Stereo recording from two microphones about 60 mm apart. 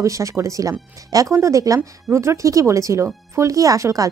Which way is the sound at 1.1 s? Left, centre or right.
Right.